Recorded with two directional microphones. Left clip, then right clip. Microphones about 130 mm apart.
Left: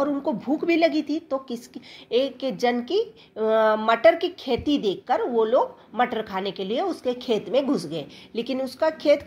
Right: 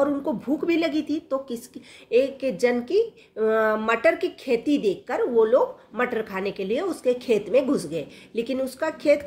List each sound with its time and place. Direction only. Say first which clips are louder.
0.0 s speech: right 1 dB; 20° left (ahead or behind)